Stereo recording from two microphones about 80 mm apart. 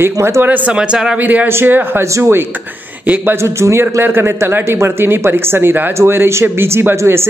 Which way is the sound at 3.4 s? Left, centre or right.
Right.